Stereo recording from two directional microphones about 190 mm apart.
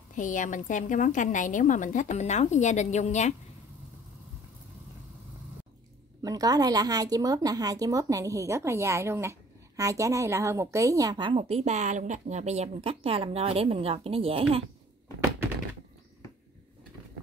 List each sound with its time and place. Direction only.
0.1 s a woman's voice: 40° left (ahead or behind)
6.2 s a woman's voice: 20° right (ahead or behind)